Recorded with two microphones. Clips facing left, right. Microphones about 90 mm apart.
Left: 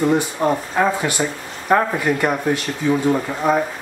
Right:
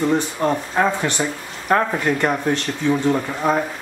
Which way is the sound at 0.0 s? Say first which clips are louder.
Left 2 dB; 10° left (ahead or behind).